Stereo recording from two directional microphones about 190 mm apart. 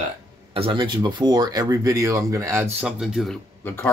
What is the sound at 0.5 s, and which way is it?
Speech, 25° right (ahead or behind).